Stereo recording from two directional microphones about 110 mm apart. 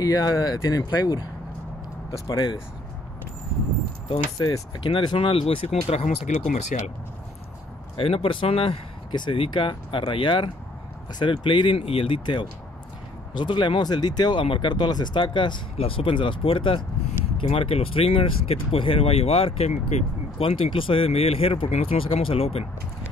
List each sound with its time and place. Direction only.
0.0 s speech: 35° left (ahead or behind)
4.1 s speech: 40° left (ahead or behind); by 6.6 s 90° left
7.9 s speech: 60° left (ahead or behind); by 14.4 s 40° left (ahead or behind)
14.4 s speech: 50° left (ahead or behind)
15.8 s speech: 55° left (ahead or behind)
22.0 s speech: 55° left (ahead or behind)